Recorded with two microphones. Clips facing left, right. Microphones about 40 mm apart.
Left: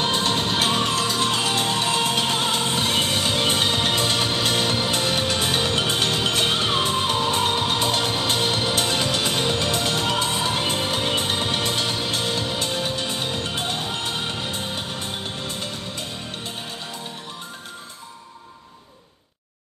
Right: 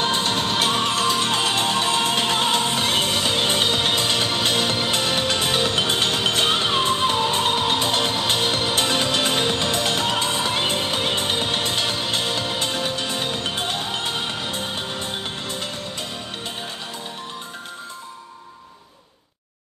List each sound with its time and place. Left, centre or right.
0.0 s music: right